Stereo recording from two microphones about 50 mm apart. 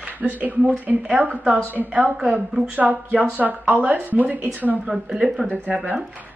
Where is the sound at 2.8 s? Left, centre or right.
Right.